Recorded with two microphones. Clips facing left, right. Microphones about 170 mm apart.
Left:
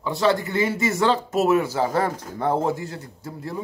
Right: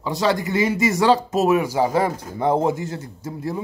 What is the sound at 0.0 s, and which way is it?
Speech, 20° right (ahead or behind).